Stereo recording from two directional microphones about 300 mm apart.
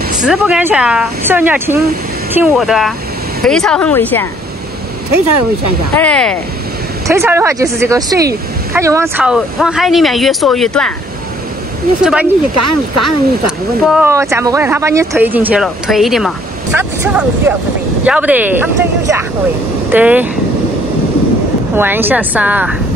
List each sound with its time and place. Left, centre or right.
0.2 s speech: centre
5.9 s speech: centre
7.1 s speech: centre
12.0 s speech: centre
12.5 s speech: right
13.8 s speech: centre
21.7 s speech: centre